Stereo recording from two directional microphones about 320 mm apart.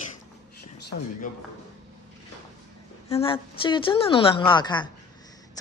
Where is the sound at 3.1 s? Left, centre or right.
Centre.